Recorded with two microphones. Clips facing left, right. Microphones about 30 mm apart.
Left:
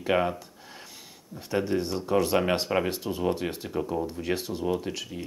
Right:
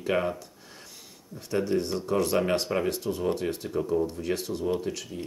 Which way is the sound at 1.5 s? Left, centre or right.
Centre.